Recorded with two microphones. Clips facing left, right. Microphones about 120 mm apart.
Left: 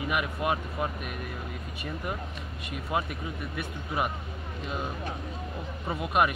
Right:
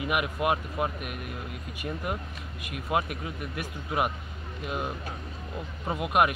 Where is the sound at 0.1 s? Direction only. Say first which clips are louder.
Right 2 dB; 10° right (ahead or behind).